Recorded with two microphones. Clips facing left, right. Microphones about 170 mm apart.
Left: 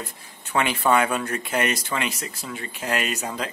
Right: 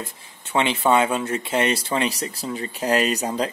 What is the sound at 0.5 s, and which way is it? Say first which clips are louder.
Speech: right 2 dB; 25° right (ahead or behind).